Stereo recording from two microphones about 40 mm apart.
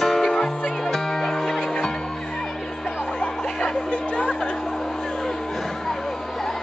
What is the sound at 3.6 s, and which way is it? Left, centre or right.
Music, left.